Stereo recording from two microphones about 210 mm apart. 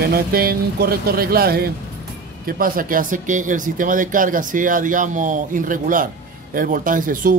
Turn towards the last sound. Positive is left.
turn(degrees=-40)  # may be behind; listen again after turning